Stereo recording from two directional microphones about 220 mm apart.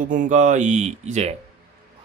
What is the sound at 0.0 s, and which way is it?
Speech, 35° right (ahead or behind).